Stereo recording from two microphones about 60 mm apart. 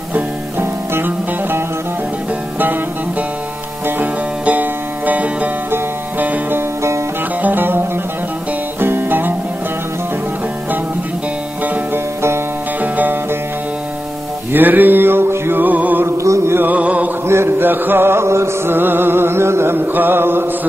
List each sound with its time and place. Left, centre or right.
0.6 s music: right
2.6 s music: right
4.5 s music: right
6.5 s music: right
7.4 s music: right
11.6 s music: right
14.5 s mantra: right
16.1 s music: right
16.5 s music: right
17.3 s chant: right